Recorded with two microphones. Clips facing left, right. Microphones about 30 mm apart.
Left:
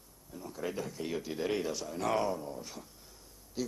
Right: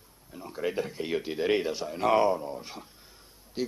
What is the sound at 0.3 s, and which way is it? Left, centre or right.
A man's voice, right.